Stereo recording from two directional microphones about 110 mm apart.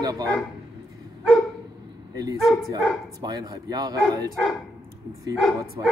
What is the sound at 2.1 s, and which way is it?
Speech, 35° right (ahead or behind).